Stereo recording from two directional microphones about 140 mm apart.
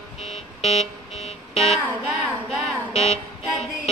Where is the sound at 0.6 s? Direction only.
50° left (ahead or behind).